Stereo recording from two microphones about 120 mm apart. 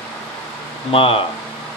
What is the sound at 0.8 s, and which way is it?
Speech, 50° left (ahead or behind).